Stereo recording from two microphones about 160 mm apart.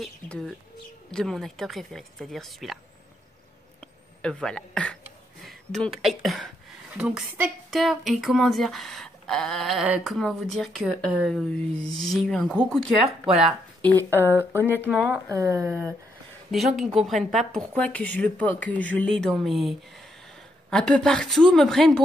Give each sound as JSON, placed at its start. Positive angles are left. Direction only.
{"t": 0.0, "sound": "speech", "side_deg": 0}
{"t": 3.8, "sound": "a sound", "side_deg": 5}
{"t": 5.4, "sound": "speech", "side_deg": 0}
{"t": 13.9, "sound": "speech", "side_deg": -15}
{"t": 15.2, "sound": "a woman's voice", "side_deg": -20}
{"t": 16.5, "sound": "speech", "side_deg": 0}
{"t": 20.7, "sound": "speech", "side_deg": 5}